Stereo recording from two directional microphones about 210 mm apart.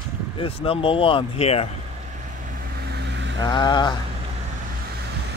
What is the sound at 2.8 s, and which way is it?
Vehicle, 50° right (ahead or behind).